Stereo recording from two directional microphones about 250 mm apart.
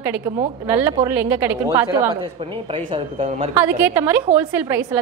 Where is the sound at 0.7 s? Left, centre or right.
Centre.